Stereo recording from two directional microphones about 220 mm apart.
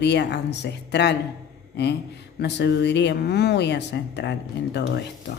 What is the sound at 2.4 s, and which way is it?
Speech, 50° left (ahead or behind).